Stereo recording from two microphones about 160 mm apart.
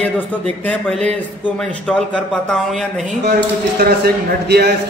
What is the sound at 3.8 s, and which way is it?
Speech, 75° right (ahead or behind).